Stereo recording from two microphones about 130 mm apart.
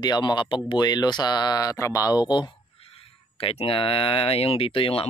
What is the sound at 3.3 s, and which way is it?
Speech, 45° left (ahead or behind).